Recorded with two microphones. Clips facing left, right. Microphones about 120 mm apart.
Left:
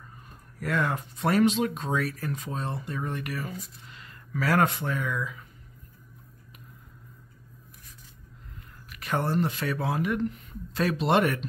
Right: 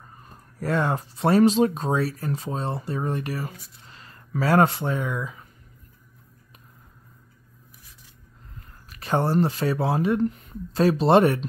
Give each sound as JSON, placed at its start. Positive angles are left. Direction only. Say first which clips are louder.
{"t": 0.6, "sound": "speech", "louder": "right 4 dB", "side_deg": -30}
{"t": 8.8, "sound": "speech", "louder": "right 5 dB", "side_deg": -30}